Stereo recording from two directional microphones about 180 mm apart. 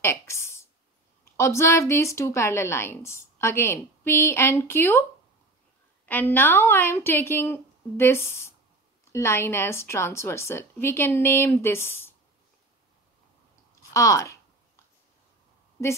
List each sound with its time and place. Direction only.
0.0 s a sound: 15° left (ahead or behind)
1.2 s a woman's voice: 15° left (ahead or behind)
6.0 s a woman's voice: 10° left (ahead or behind)
13.9 s speech: 15° left (ahead or behind)